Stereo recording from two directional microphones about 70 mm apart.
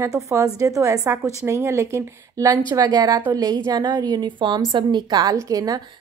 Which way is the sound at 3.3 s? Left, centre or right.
Right.